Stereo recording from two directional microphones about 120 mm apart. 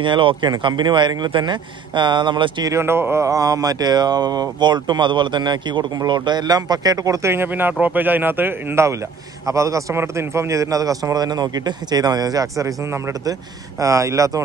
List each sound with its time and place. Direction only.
0.0 s speech: 45° right (ahead or behind)
2.7 s a man's voice: 20° right (ahead or behind)